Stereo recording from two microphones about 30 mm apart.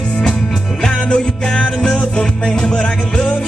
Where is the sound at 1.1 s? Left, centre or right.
Left.